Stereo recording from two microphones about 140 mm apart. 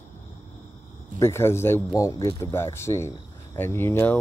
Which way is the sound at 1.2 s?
20° left (ahead or behind).